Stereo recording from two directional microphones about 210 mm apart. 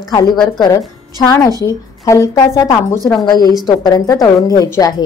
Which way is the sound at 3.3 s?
20° left (ahead or behind).